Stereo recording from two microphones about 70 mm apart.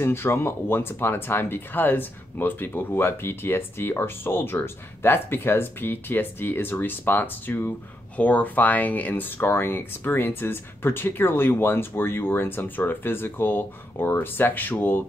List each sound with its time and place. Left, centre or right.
0.0 s speech: left